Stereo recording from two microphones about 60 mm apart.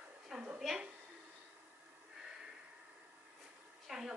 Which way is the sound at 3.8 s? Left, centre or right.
Centre.